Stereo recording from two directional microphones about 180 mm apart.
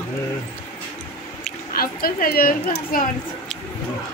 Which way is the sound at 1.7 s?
55° left (ahead or behind).